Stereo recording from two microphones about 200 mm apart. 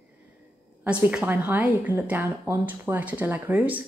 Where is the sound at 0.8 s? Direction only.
5° right (ahead or behind).